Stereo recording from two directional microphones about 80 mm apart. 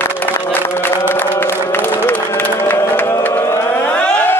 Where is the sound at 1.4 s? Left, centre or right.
Left.